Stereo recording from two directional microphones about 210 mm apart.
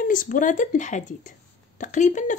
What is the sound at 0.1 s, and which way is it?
A woman's voice, 40° left (ahead or behind).